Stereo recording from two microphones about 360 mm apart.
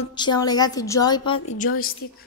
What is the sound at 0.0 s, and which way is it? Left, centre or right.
A woman's voice, centre.